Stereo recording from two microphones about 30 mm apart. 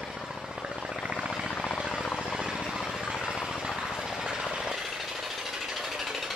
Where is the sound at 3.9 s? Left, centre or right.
Centre.